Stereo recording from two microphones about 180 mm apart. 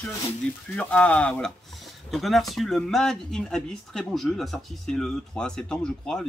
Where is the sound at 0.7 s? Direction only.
5° left (ahead or behind).